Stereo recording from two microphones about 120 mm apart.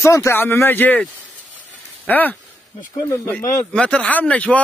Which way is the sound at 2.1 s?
15° left (ahead or behind).